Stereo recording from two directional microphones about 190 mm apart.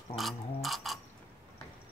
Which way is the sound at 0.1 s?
Centre (ahead or behind).